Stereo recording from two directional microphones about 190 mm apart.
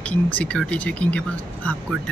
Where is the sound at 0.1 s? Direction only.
5° left (ahead or behind).